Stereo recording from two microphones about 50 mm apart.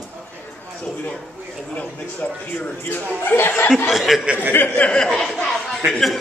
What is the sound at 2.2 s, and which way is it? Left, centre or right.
Speech, left.